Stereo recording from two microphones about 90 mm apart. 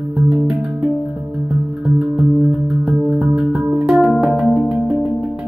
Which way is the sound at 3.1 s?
20° right (ahead or behind).